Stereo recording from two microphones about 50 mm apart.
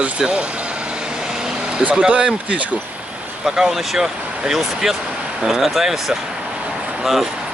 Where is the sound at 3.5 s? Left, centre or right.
Centre.